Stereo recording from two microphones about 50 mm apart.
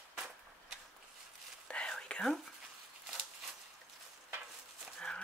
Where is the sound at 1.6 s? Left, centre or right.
Centre.